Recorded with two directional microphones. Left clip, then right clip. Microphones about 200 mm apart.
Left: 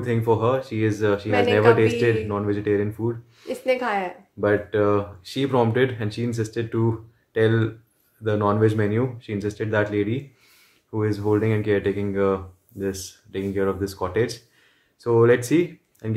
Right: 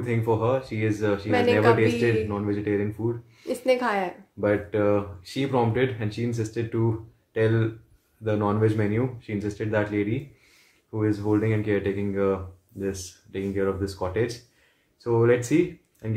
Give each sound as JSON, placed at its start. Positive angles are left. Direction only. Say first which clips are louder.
{"t": 0.0, "sound": "speech", "louder": "left 3 dB", "side_deg": 25}
{"t": 3.4, "sound": "speech", "louder": "even", "side_deg": -15}
{"t": 4.4, "sound": "speech", "louder": "left 3 dB", "side_deg": 25}